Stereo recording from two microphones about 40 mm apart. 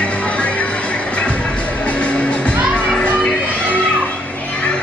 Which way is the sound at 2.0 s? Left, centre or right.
Left.